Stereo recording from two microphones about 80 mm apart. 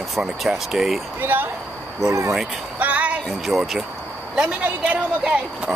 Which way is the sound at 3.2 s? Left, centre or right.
Centre.